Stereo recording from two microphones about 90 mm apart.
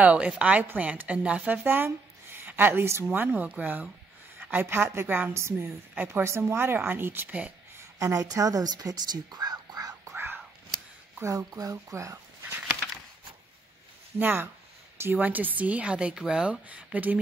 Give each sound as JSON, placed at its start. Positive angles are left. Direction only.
{"t": 0.0, "sound": "a woman's voice", "side_deg": -15}
{"t": 7.7, "sound": "a woman's voice", "side_deg": -35}
{"t": 10.1, "sound": "whispering", "side_deg": -25}
{"t": 11.3, "sound": "speech", "side_deg": -40}
{"t": 14.1, "sound": "speech", "side_deg": -25}